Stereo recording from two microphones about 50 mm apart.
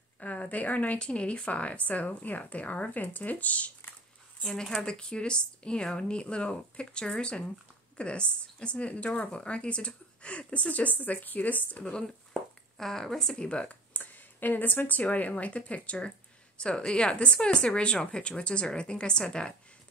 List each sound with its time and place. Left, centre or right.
0.2 s speech: left
0.9 s speech: left
4.5 s a woman's voice: centre; by 11.5 s left
11.8 s a woman's voice: centre
13.3 s speech: left